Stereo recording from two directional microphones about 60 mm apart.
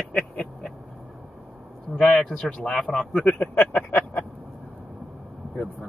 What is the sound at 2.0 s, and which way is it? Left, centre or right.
Speech, left.